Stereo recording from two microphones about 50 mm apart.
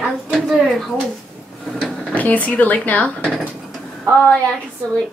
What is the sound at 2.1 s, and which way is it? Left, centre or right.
Speech, left.